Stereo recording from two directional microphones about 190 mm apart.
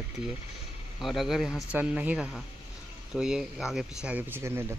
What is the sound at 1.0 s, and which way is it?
Speech, centre (ahead or behind).